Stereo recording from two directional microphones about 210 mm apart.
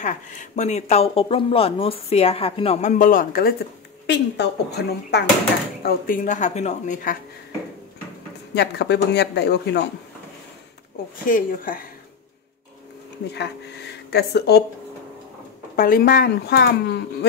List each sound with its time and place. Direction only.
0.0 s speech: 35° left (ahead or behind)
4.1 s speech: 55° left (ahead or behind); by 7.2 s 35° left (ahead or behind)
8.5 s speech: 55° left (ahead or behind)
11.2 s speech: 40° left (ahead or behind)
14.1 s speech: 50° left (ahead or behind)
15.7 s speech: 45° left (ahead or behind)